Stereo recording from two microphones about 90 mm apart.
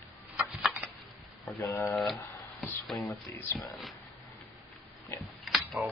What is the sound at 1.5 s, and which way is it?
Speech, 30° left (ahead or behind).